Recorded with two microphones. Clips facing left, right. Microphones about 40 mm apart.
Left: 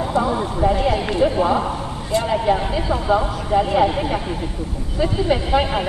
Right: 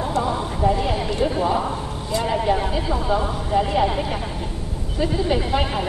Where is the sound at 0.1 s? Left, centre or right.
Centre.